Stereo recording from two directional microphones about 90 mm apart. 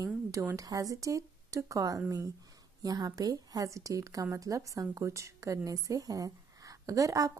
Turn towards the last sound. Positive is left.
turn(degrees=-40)  # may be behind; listen again after turning